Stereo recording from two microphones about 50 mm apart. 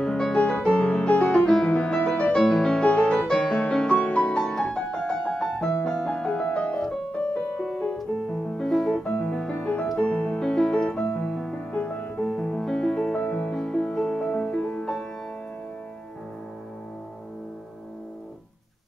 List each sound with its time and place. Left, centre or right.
0.0 s music: centre
2.2 s music: centre
8.5 s piano: centre
8.9 s music: centre
9.9 s piano: centre
11.2 s music: centre
11.7 s music: left
12.2 s music: centre
13.2 s music: left
13.6 s music: centre; by 14.9 s left